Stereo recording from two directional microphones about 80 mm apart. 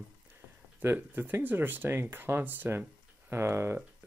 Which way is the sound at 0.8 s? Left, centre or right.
Right.